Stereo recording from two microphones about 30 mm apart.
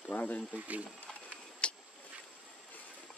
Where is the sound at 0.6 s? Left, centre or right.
Right.